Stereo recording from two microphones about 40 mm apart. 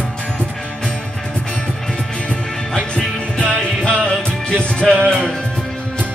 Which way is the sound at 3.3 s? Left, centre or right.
Left.